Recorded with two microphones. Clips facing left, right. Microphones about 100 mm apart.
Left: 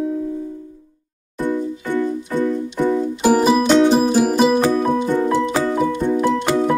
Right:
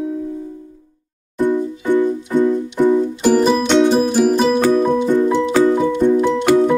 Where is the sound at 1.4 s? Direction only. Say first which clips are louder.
Right 4 dB; 15° right (ahead or behind).